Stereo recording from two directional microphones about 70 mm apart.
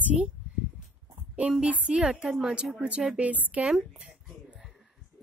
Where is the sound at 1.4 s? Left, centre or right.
Centre.